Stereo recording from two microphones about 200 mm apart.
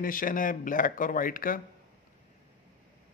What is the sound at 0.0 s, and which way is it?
Speech, 45° left (ahead or behind).